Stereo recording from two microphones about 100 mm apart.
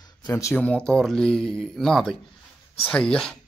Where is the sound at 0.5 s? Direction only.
10° left (ahead or behind).